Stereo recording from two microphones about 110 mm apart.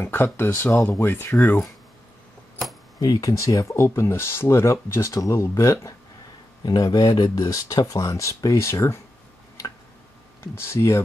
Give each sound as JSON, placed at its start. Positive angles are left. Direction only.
{"t": 0.0, "sound": "speech", "side_deg": 20}
{"t": 3.0, "sound": "speech", "side_deg": 35}
{"t": 10.5, "sound": "speech", "side_deg": 25}